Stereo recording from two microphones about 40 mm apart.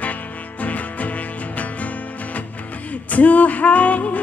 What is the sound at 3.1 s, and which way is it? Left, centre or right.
Music, left.